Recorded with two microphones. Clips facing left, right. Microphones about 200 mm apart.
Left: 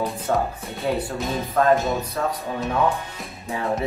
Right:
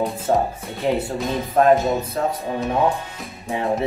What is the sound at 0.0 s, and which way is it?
Speech, 20° right (ahead or behind).